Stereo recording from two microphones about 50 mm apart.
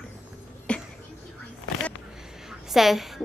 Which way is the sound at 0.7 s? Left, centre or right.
Left.